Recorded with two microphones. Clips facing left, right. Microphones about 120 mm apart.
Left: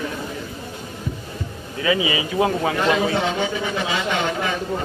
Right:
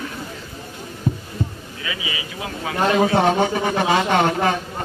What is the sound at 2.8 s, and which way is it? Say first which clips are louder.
A man's voice: right 7 dB; 50° right (ahead or behind).